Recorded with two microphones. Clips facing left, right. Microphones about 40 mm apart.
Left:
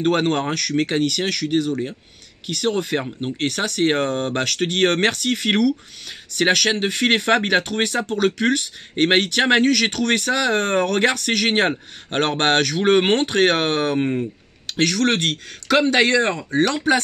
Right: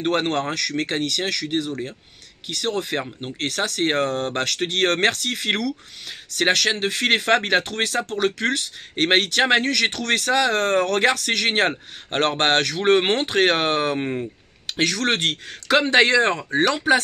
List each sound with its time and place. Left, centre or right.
0.3 s speech: centre
0.8 s speech: centre
3.4 s speech: centre
3.9 s speech: centre
4.3 s speech: centre
14.8 s speech: centre